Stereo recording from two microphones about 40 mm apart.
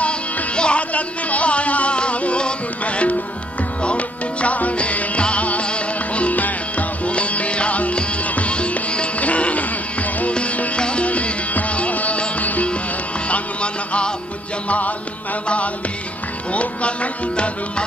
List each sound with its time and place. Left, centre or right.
0.6 s music: left
14.7 s music: left
16.5 s tabla: left